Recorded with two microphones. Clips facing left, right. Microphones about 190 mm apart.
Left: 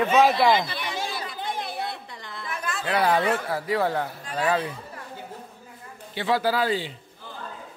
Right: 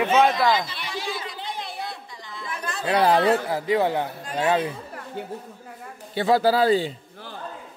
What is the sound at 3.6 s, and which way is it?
Speech, 20° right (ahead or behind).